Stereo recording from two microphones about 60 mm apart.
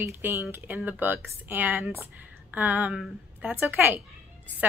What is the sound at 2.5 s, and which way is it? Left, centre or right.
A woman's voice, right.